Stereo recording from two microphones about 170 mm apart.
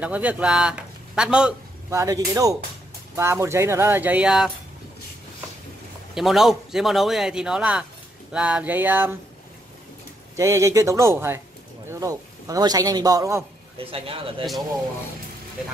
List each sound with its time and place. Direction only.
0.0 s a man's voice: 10° right (ahead or behind)
1.9 s a man's voice: 20° right (ahead or behind)
6.1 s a man's voice: centre (ahead or behind)
10.3 s a man's voice: 15° right (ahead or behind)
13.7 s speech: 35° right (ahead or behind)